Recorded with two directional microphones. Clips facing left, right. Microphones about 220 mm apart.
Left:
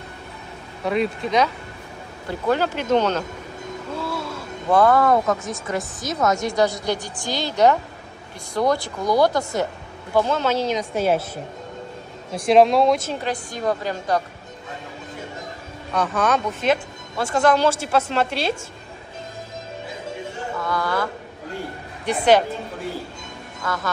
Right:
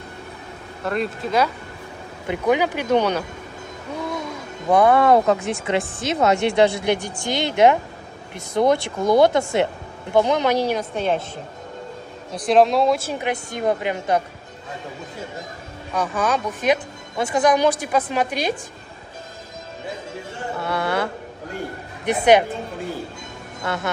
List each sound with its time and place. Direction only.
0.8 s speech: centre (ahead or behind)
2.2 s speech: 15° right (ahead or behind)
3.9 s a sound: 15° right (ahead or behind); by 5.6 s 30° right (ahead or behind)
6.0 s speech: 30° right (ahead or behind)
10.1 s speech: 15° right (ahead or behind)
11.0 s speech: 5° left (ahead or behind)
12.4 s speech: centre (ahead or behind)
13.1 s speech: 20° right (ahead or behind)
15.9 s speech: 10° right (ahead or behind)
20.5 s a sound: 30° right (ahead or behind)
23.6 s speech: 25° right (ahead or behind)